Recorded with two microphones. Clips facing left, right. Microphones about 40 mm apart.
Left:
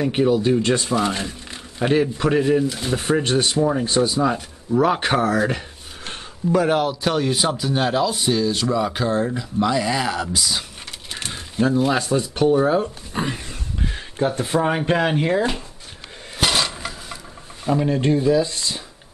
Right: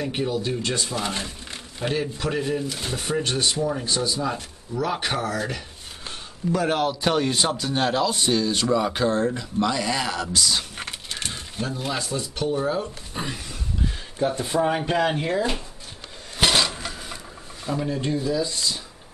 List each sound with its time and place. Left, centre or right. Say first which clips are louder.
0.0 s speech: left 8 dB; left
0.9 s speech: left 6 dB; centre
1.8 s speech: left 8 dB; left
6.7 s speech: left 2 dB; centre
11.2 s a sound: left 11 dB; left
12.0 s speech: left 8 dB; left
14.1 s speech: left 3 dB; left
16.4 s a sound: even; centre
17.6 s speech: left 7 dB; centre
17.9 s speech: left 7 dB; left